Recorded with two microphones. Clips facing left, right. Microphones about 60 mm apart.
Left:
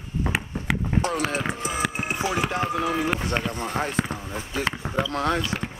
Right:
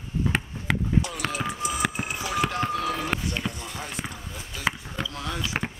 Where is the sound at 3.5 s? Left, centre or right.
Left.